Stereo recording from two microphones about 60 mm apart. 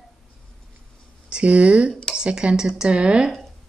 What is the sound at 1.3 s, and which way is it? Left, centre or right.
Speech, right.